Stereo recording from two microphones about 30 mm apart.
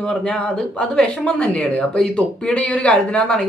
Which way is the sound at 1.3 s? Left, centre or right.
Left.